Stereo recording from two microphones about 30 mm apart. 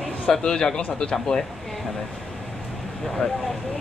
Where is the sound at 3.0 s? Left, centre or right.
Centre.